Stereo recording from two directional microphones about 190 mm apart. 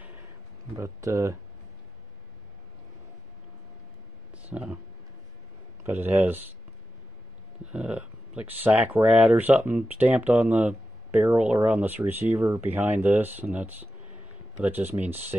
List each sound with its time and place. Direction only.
0.7 s speech: 15° right (ahead or behind)
4.4 s speech: 5° right (ahead or behind)
5.9 s speech: 10° right (ahead or behind)
7.6 s speech: 5° right (ahead or behind)